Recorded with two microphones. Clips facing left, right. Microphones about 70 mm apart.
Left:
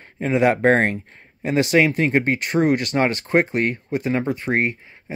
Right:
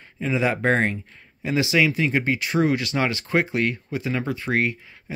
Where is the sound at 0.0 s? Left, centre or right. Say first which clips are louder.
Left 5 dB; left.